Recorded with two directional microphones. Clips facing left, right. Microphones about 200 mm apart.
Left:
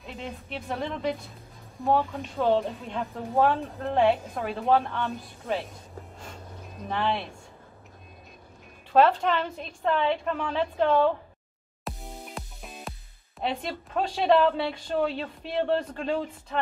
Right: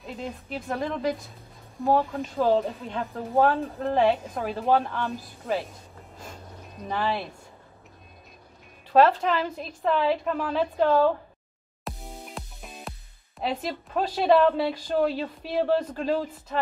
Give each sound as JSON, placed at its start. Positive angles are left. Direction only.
{"t": 0.0, "sound": "a woman's voice", "side_deg": 0}
{"t": 6.9, "sound": "a woman's voice", "side_deg": -5}
{"t": 8.9, "sound": "a woman's voice", "side_deg": 0}
{"t": 11.8, "sound": "music", "side_deg": 0}
{"t": 13.4, "sound": "a woman's voice", "side_deg": -5}